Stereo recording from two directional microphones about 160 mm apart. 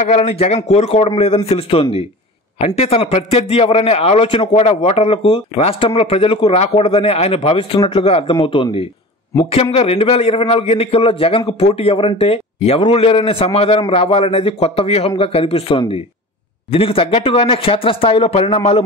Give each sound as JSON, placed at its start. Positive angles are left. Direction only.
{"t": 0.0, "sound": "a man's voice", "side_deg": 45}